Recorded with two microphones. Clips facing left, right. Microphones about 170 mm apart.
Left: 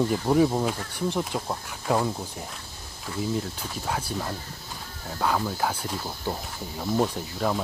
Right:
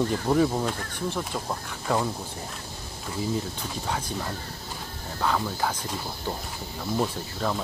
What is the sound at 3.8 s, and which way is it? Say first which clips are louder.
Speech: left 2 dB; 5° left (ahead or behind).